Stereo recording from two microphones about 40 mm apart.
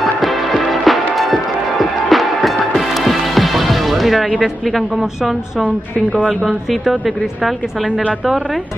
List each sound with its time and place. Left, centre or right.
0.0 s music: centre
4.6 s speech: centre
6.1 s speech: right
6.8 s speech: centre